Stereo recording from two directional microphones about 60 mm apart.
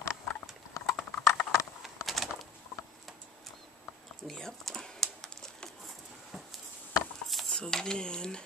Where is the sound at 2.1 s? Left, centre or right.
Centre.